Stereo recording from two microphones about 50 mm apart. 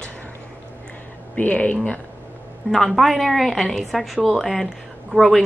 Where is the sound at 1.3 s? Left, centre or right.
Left.